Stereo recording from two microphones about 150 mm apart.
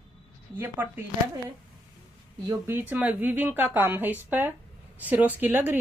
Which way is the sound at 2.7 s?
10° right (ahead or behind).